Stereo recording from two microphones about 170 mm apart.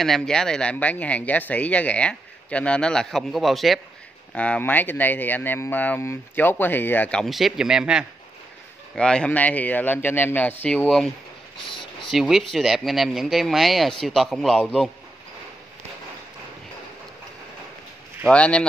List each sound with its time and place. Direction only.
0.0 s speech: centre (ahead or behind)
11.7 s a sound: 30° left (ahead or behind)
12.1 s speech: centre (ahead or behind)
18.3 s speech: 5° left (ahead or behind)